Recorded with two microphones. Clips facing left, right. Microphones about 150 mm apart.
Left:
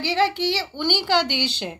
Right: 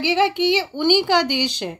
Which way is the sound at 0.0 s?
15° right (ahead or behind).